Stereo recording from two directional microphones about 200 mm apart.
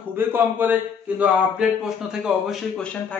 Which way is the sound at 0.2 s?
10° right (ahead or behind).